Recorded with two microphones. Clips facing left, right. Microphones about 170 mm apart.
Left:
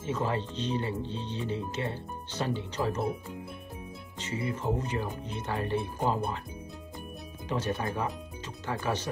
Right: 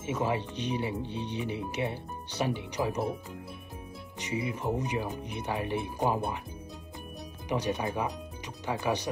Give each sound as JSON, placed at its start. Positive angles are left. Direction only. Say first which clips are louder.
{"t": 0.0, "sound": "speech", "louder": "right 1 dB", "side_deg": -15}
{"t": 4.2, "sound": "speech", "louder": "right 1 dB", "side_deg": -15}
{"t": 7.4, "sound": "speech", "louder": "right 1 dB", "side_deg": -15}